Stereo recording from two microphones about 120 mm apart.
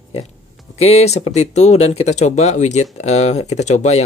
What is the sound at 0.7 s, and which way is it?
Speech, 60° left (ahead or behind).